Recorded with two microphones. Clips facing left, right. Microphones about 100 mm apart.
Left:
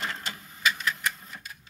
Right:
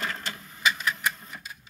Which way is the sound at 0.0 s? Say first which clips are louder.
Right 1 dB; 25° left (ahead or behind).